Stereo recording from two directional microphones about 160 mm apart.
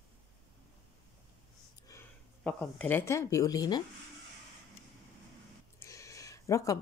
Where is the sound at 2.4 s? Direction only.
5° left (ahead or behind); by 3.8 s 25° left (ahead or behind).